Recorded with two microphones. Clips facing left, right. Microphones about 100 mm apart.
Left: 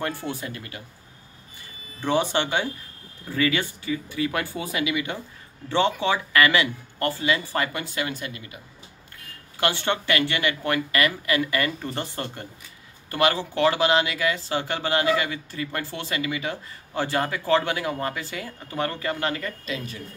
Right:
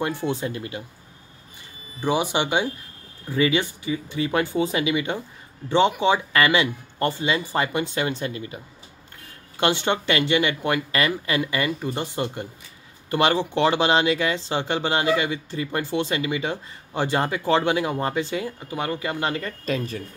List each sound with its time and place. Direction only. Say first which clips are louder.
0.2 s speech: right 6 dB; 25° right (ahead or behind)
2.0 s speech: right 1 dB; 15° right (ahead or behind); by 8.5 s 30° right (ahead or behind)
9.6 s speech: right 3 dB; 20° right (ahead or behind)
19.6 s speech: right 6 dB; 45° right (ahead or behind)